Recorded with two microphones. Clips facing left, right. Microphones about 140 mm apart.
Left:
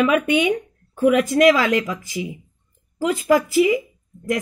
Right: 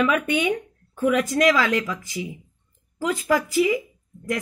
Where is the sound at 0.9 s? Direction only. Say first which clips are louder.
Left 4 dB; 60° left (ahead or behind).